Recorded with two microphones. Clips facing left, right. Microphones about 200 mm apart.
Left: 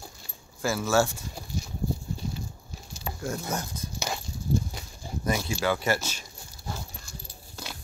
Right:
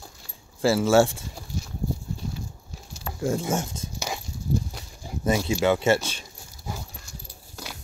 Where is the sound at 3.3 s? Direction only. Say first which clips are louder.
Right 7 dB; 30° right (ahead or behind).